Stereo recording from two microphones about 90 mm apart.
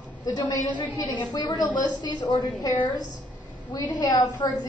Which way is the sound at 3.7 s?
45° left (ahead or behind).